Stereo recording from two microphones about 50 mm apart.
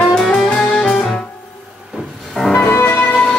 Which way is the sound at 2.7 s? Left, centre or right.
Left.